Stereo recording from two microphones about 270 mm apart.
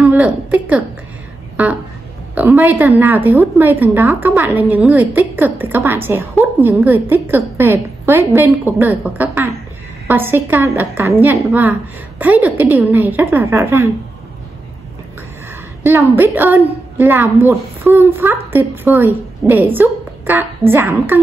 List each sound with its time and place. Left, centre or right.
0.0 s a woman's voice: centre
15.8 s a woman's voice: centre